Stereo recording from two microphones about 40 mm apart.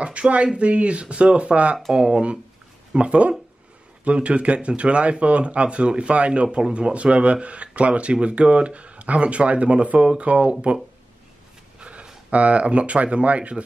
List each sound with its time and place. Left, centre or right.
0.0 s speech: right
2.0 s speech: right
11.8 s a sound: right
12.3 s speech: right